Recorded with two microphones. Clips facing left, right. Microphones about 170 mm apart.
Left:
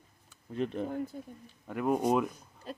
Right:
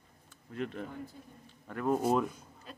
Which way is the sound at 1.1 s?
55° left (ahead or behind).